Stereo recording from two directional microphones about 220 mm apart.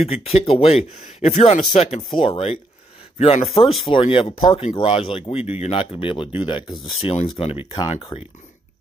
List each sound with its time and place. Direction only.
0.1 s speech: 25° left (ahead or behind)
3.5 s speech: centre (ahead or behind)
3.9 s speech: 25° left (ahead or behind)